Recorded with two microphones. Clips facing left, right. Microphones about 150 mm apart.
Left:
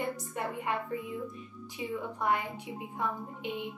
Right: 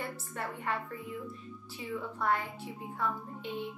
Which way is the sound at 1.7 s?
15° left (ahead or behind).